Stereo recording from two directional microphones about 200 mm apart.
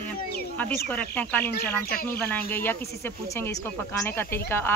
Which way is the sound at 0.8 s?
10° left (ahead or behind).